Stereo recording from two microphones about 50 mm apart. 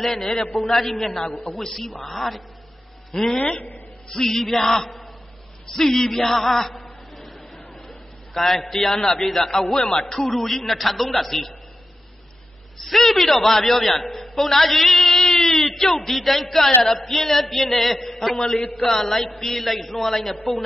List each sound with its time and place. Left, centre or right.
0.0 s a man's voice: centre
1.3 s a man's voice: left
1.6 s a man's voice: centre
12.8 s a man's voice: centre